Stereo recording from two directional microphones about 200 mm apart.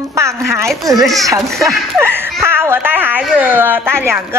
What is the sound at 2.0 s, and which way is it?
Speech, 10° right (ahead or behind).